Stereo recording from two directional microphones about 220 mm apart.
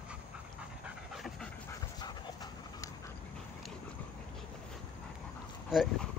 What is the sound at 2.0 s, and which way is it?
Dog, 20° left (ahead or behind).